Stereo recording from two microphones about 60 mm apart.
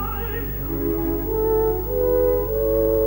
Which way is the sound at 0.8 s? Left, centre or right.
Left.